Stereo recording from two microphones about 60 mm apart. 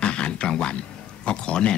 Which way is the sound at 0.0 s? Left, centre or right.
Centre.